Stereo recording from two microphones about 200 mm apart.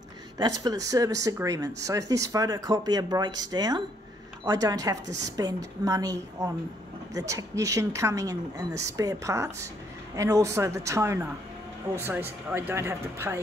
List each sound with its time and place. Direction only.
0.4 s speech: 20° right (ahead or behind)